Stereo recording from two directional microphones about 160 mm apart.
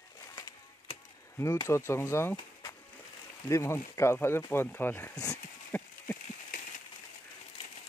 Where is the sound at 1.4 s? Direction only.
15° left (ahead or behind).